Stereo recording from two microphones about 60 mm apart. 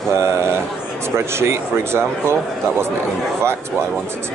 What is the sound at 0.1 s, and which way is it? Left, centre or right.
Speech, right.